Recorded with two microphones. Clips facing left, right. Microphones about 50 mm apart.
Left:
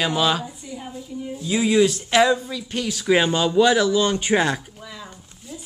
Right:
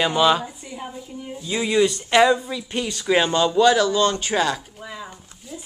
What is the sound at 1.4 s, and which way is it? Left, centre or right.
Speech, centre.